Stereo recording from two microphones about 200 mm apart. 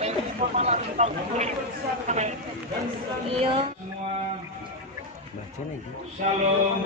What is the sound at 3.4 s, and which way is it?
Speech, 30° right (ahead or behind).